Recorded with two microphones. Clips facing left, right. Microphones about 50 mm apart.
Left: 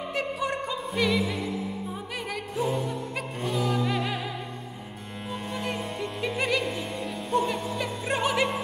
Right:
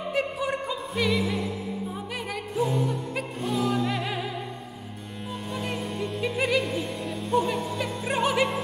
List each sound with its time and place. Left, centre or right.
0.1 s music: centre
5.3 s music: centre